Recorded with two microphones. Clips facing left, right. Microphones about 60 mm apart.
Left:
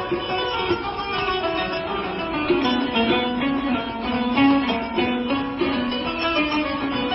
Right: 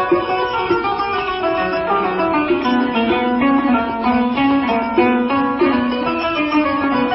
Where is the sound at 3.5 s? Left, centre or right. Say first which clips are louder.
Right 8 dB; right.